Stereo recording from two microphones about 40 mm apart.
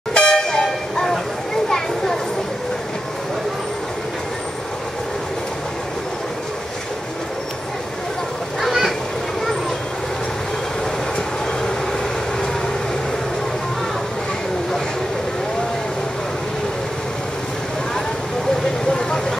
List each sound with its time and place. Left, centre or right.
0.1 s vehicle horn: centre
18.9 s vehicle: centre